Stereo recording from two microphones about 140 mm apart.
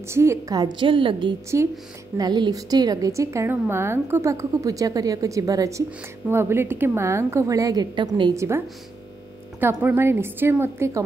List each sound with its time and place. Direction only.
0.1 s a woman's voice: 20° right (ahead or behind); by 1.3 s 40° right (ahead or behind)
1.5 s a woman's voice: 20° right (ahead or behind)
8.4 s a woman's voice: 20° right (ahead or behind)